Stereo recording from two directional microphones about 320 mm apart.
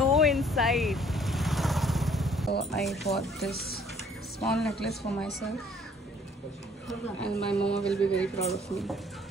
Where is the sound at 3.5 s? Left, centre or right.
Left.